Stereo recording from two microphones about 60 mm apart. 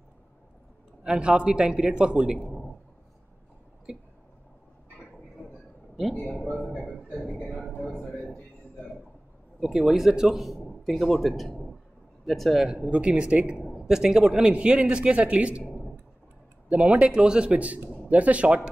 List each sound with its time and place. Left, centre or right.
1.0 s a man's voice: centre
6.4 s a man's voice: centre
6.8 s a sound: centre
9.6 s a man's voice: centre
12.9 s a man's voice: centre
13.7 s a man's voice: centre
16.6 s a man's voice: right